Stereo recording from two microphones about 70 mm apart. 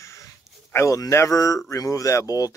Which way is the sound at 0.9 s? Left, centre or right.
Left.